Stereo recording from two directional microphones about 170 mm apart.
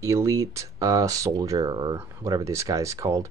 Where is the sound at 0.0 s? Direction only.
15° right (ahead or behind).